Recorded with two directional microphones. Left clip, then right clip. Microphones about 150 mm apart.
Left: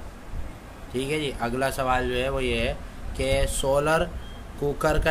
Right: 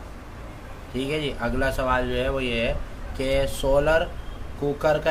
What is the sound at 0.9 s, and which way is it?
A man's voice, 40° left (ahead or behind).